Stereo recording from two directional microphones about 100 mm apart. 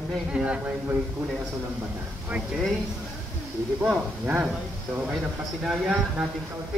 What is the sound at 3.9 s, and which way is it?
Speech, 20° right (ahead or behind).